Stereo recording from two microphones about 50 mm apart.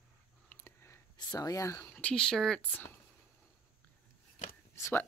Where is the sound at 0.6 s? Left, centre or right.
Left.